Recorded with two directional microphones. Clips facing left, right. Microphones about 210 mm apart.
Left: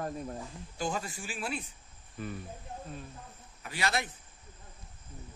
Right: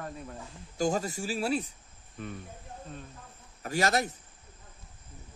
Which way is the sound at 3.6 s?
45° right (ahead or behind).